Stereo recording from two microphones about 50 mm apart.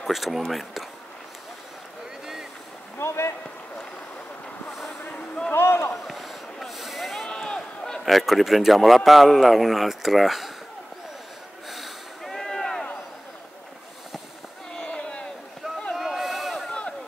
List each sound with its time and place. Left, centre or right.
0.0 s speech: centre
3.0 s a sound: left
5.5 s rowboat: left
6.0 s boat: centre
7.4 s run: centre
8.0 s speech: centre
11.7 s snort: centre
14.8 s a sound: centre
16.0 s run: centre